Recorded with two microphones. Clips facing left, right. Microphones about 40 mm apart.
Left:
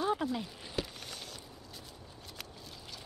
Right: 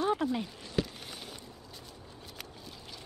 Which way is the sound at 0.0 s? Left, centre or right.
Centre.